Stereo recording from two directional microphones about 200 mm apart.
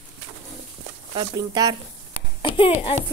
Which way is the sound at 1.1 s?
20° right (ahead or behind).